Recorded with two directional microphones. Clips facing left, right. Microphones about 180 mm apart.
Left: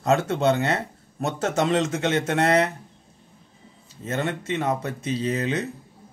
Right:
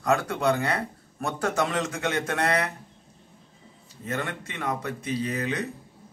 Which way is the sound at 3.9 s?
25° left (ahead or behind).